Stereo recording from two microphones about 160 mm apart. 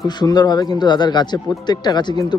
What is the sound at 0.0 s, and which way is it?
Speech, 25° left (ahead or behind).